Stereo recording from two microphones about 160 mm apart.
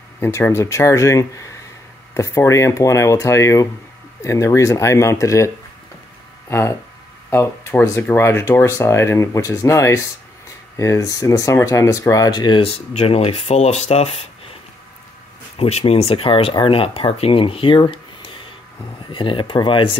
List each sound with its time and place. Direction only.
0.2 s speech: 15° left (ahead or behind)
6.5 s speech: 15° left (ahead or behind); by 14.2 s 40° left (ahead or behind)
15.5 s speech: 35° left (ahead or behind)